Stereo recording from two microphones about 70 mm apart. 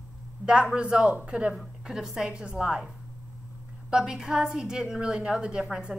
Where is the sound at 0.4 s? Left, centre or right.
Right.